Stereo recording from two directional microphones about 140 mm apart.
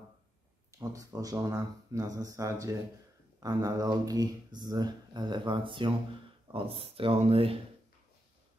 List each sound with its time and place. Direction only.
0.7 s speech: 25° right (ahead or behind); by 7.5 s 40° right (ahead or behind)